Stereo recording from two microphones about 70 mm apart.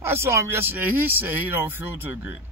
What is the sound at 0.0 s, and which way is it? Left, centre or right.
Speech, right.